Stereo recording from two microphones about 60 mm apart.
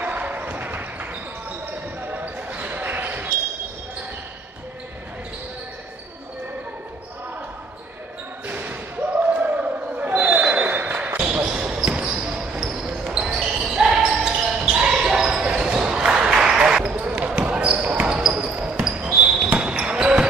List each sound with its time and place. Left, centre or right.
0.0 s basketball bounce: right
8.5 s basketball bounce: right; by 16.8 s centre
16.8 s basketball bounce: right